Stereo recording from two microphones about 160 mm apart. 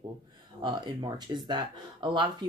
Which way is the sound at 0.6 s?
25° right (ahead or behind).